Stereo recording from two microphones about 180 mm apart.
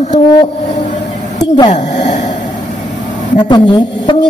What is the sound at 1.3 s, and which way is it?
Speech, 20° left (ahead or behind).